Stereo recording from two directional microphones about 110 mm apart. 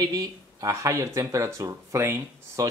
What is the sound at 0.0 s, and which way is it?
Speech, 35° right (ahead or behind).